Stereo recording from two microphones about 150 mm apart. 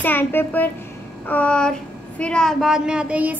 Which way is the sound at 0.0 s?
10° left (ahead or behind).